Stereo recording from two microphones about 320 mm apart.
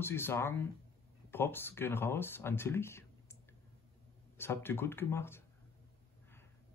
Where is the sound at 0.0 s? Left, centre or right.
Centre.